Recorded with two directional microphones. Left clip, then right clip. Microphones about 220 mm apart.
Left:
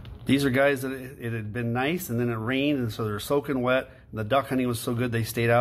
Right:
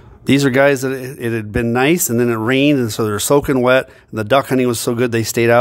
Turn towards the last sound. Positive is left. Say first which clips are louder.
# right 11 dB
turn(degrees=-45)  # may be behind; listen again after turning